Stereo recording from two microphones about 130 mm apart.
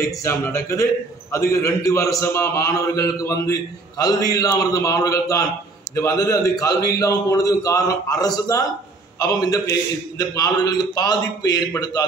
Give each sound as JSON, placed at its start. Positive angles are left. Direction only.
{"t": 0.2, "sound": "a man's voice", "side_deg": 20}